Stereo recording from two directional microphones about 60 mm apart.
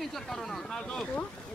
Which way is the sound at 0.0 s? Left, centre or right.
Centre.